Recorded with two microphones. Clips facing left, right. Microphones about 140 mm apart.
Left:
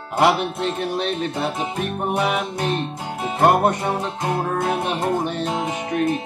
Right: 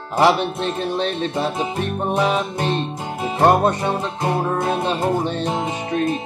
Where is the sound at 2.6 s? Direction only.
20° right (ahead or behind).